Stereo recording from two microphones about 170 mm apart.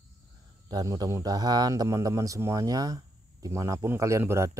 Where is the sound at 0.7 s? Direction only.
20° right (ahead or behind).